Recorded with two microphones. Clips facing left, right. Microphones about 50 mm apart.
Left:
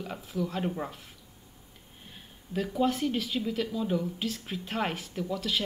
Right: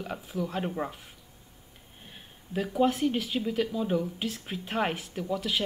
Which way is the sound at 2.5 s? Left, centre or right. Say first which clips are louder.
Right 2 dB; centre.